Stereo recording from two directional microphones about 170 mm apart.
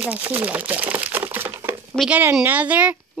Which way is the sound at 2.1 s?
15° right (ahead or behind).